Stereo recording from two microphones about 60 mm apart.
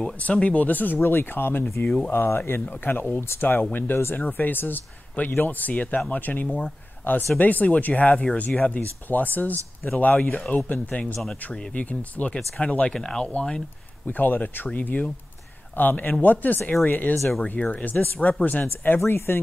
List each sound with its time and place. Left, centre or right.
0.2 s speech: left
12.9 s speech: centre
14.0 s speech: left
18.9 s speech: left